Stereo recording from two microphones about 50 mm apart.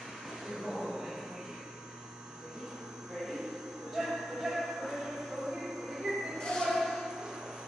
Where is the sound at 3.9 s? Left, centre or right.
Centre.